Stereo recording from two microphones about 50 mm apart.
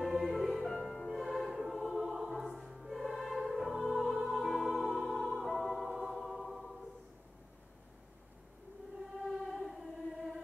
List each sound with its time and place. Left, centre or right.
0.0 s music: centre
9.5 s singing: centre